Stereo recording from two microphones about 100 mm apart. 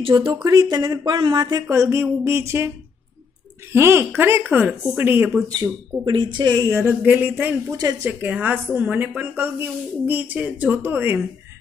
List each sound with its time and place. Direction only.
0.1 s speech: 50° right (ahead or behind)
1.7 s speech: 30° right (ahead or behind)
3.7 s speech: 25° right (ahead or behind)
5.5 s speech: 45° right (ahead or behind)
6.7 s speech: 25° right (ahead or behind)
7.7 s speech: 35° right (ahead or behind)
8.1 s speech: 15° right (ahead or behind)